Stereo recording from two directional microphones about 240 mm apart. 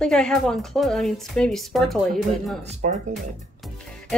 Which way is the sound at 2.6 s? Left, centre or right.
Right.